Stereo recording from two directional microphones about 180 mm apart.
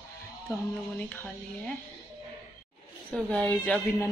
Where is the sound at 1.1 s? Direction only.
10° left (ahead or behind).